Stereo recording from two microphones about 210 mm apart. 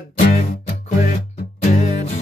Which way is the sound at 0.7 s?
35° left (ahead or behind).